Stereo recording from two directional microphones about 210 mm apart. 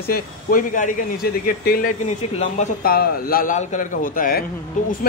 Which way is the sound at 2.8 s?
45° left (ahead or behind).